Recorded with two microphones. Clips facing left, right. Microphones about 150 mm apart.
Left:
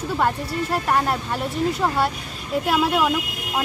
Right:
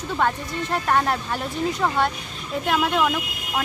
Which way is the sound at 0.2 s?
5° left (ahead or behind).